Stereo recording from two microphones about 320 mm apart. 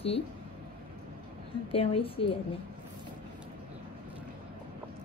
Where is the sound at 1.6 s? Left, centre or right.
Centre.